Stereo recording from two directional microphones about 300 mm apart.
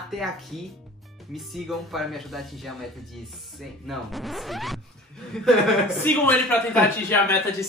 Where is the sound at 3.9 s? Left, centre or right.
Centre.